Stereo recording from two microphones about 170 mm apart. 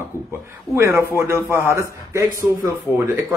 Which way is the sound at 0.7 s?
15° right (ahead or behind).